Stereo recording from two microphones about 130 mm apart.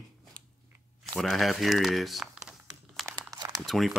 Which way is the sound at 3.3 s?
25° right (ahead or behind).